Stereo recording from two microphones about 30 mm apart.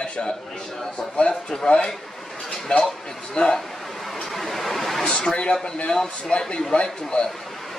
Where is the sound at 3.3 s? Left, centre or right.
Left.